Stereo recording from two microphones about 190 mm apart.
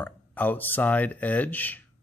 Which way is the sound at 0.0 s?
10° left (ahead or behind).